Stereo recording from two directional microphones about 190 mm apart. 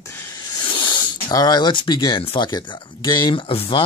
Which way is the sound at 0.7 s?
25° left (ahead or behind).